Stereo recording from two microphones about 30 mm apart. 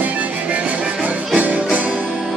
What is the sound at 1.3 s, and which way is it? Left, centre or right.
Music, right.